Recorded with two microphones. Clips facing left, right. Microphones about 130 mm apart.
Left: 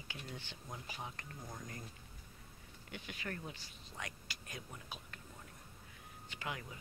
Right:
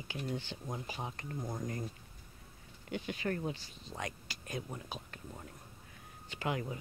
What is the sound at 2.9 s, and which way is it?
Speech, 30° right (ahead or behind).